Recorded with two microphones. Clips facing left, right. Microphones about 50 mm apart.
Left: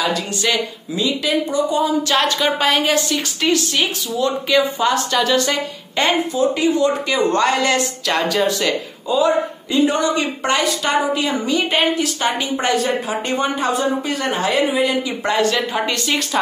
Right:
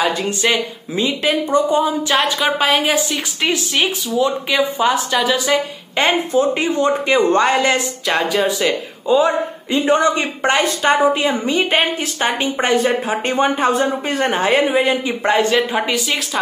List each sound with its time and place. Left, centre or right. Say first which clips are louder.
0.0 s a woman's voice: right 2 dB; right
2.0 s a woman's voice: right 1 dB; centre
6.1 s a woman's voice: right 2 dB; right; by 8.7 s centre
9.0 s a woman's voice: right 2 dB; right